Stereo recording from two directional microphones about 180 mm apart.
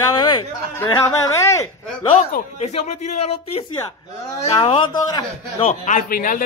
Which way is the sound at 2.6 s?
35° left (ahead or behind).